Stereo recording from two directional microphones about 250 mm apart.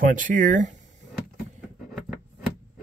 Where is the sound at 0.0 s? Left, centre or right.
Right.